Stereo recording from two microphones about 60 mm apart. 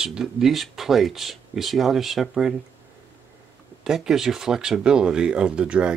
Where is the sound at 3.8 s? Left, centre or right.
Centre.